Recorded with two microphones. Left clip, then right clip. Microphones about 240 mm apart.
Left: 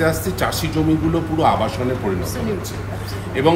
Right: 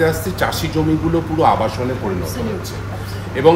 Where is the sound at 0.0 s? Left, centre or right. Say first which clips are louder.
Right 2 dB; centre.